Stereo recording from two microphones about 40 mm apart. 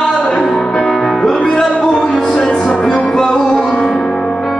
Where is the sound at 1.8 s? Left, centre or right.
Left.